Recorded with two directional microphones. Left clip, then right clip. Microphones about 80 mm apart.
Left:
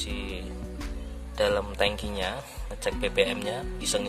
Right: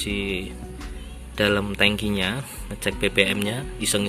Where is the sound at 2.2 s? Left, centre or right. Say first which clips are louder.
Right 5 dB; centre.